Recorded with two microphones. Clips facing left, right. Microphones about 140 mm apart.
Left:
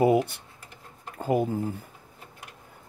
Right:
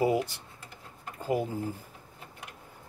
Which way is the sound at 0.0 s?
55° left (ahead or behind).